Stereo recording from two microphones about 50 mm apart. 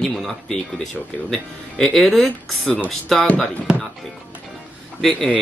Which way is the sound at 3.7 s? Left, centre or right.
Centre.